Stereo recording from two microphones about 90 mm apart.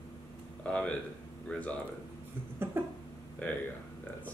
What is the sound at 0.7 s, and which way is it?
Speech, 10° left (ahead or behind).